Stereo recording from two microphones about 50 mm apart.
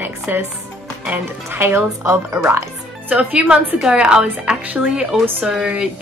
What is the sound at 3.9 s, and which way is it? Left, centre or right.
Speech, centre.